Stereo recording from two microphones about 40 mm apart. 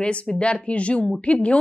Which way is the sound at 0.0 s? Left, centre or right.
Left.